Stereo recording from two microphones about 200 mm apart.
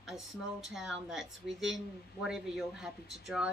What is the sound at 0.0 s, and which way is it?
A woman's voice, centre (ahead or behind).